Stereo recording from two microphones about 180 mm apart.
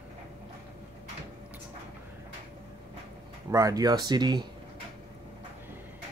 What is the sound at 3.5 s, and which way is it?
Speech, 20° right (ahead or behind).